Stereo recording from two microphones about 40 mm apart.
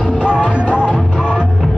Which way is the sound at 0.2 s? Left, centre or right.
Left.